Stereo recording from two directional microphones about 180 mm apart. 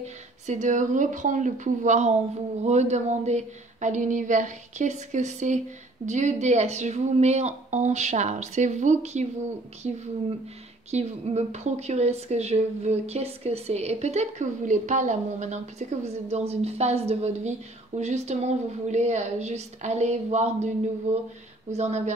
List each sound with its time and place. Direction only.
0.0 s a woman's voice: 40° right (ahead or behind)